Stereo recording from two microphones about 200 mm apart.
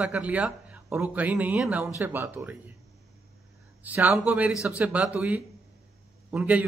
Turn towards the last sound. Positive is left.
turn(degrees=-5)  # may be behind; listen again after turning